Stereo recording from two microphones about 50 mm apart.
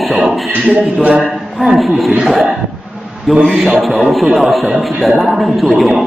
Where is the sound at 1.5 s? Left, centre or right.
Centre.